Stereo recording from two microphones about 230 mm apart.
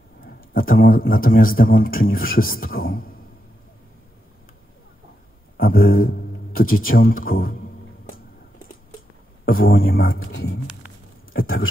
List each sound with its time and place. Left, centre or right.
0.2 s a man's voice: left
5.6 s speech: left
9.5 s speech: left
11.4 s speech: left